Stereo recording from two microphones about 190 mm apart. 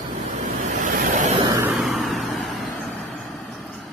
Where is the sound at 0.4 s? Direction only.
45° right (ahead or behind).